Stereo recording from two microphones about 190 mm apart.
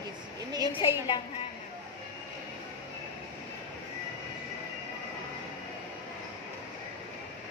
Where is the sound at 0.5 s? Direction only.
20° right (ahead or behind).